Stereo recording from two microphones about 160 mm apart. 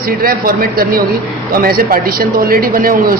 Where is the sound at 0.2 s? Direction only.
70° right (ahead or behind).